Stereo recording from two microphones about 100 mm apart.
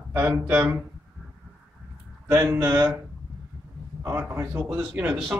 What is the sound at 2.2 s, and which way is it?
Speech, 20° right (ahead or behind).